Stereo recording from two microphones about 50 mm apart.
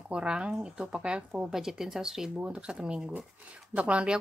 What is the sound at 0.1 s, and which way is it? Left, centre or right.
Speech, centre.